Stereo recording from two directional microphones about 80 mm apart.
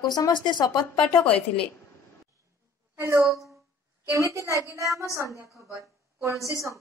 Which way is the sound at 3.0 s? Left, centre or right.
Right.